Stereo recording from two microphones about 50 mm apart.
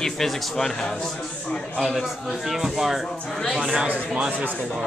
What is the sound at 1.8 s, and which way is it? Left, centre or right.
A man's voice, centre.